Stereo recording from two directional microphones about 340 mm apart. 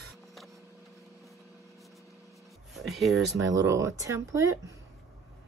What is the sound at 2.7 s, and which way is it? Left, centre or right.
Speech, centre.